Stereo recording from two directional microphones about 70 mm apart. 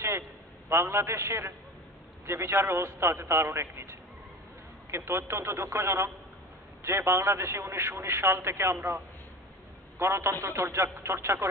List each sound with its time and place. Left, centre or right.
0.7 s a man's voice: right
9.9 s a man's voice: right